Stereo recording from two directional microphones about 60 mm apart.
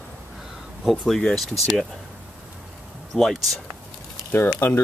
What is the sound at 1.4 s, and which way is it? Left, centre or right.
Speech, centre.